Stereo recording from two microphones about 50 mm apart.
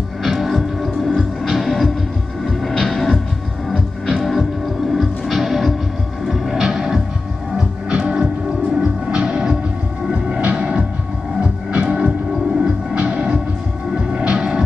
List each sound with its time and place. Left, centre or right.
0.2 s music: centre